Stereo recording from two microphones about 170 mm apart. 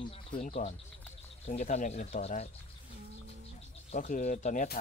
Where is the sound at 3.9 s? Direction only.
45° left (ahead or behind).